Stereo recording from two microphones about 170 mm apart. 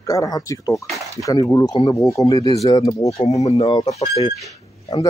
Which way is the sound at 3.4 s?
35° left (ahead or behind).